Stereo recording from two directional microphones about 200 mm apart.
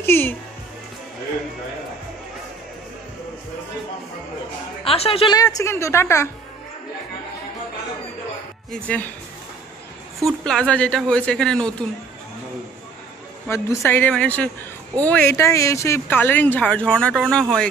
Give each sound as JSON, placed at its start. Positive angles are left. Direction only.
{"t": 0.0, "sound": "speech", "side_deg": 10}
{"t": 4.8, "sound": "a woman's voice", "side_deg": 30}
{"t": 8.8, "sound": "speech", "side_deg": 5}
{"t": 10.4, "sound": "speech", "side_deg": 5}
{"t": 13.5, "sound": "speech", "side_deg": 10}